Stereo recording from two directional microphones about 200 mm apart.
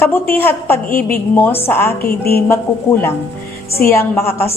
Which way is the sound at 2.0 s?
50° left (ahead or behind).